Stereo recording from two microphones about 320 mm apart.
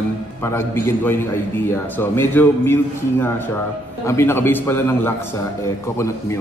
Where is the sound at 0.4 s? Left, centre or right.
Centre.